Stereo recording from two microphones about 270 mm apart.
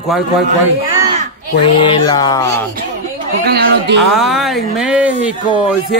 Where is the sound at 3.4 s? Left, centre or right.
Right.